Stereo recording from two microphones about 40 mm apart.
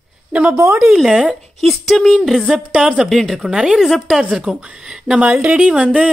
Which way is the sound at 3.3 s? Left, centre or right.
Centre.